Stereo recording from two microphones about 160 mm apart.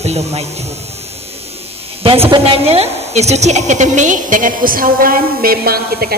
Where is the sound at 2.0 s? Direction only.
35° right (ahead or behind).